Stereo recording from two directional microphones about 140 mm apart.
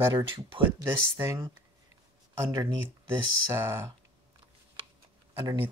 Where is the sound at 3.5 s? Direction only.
20° right (ahead or behind).